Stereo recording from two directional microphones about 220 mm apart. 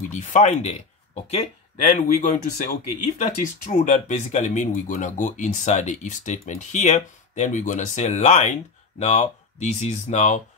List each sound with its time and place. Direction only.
0.1 s speech: 35° left (ahead or behind)